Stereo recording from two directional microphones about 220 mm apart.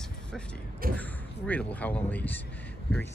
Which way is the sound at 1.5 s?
5° left (ahead or behind).